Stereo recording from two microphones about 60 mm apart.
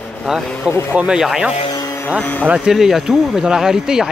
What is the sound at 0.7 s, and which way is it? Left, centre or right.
Speech, left.